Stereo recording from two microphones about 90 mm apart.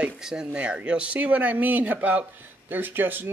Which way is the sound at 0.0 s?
5° right (ahead or behind).